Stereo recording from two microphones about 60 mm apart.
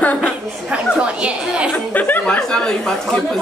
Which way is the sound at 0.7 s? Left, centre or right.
Centre.